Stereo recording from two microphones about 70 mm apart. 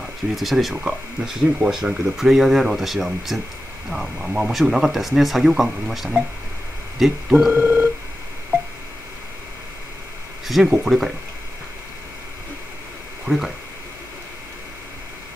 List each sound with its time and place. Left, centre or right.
0.4 s speech: centre
7.5 s telephone dialing: right
10.4 s speech: centre
13.3 s speech: right